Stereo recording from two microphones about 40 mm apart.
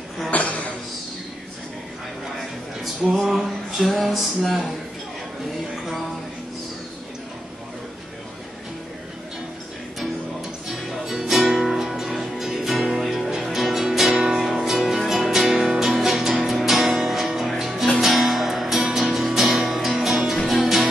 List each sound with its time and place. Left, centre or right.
0.3 s a sound: left
3.2 s music: centre
10.7 s music: centre